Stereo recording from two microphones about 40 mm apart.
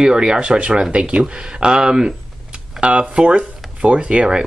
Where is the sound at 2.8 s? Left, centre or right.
Right.